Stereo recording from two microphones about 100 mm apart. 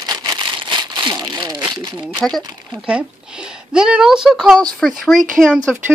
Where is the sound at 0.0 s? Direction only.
40° right (ahead or behind).